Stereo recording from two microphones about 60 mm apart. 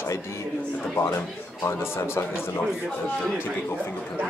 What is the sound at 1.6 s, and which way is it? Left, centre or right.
Speech, left.